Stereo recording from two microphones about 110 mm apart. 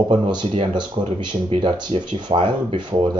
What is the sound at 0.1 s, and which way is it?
Speech, 45° right (ahead or behind).